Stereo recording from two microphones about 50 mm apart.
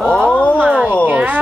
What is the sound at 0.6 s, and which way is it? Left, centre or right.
Speech, right.